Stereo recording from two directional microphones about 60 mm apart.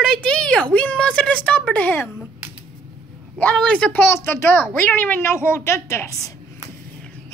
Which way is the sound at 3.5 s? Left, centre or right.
Centre.